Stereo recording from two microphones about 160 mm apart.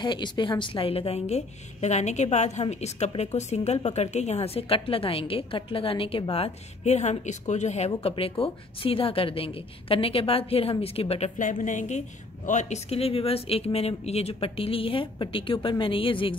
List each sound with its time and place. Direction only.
0.0 s a woman's voice: 30° left (ahead or behind)